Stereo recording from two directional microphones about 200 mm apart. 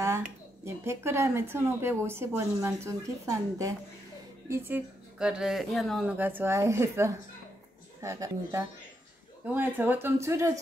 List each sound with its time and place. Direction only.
0.7 s a woman's voice: 15° right (ahead or behind)